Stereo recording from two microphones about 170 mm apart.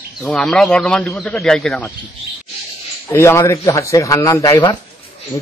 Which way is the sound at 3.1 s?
15° left (ahead or behind).